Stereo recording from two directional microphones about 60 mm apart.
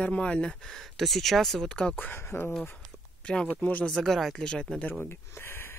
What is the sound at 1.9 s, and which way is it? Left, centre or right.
Speech, left.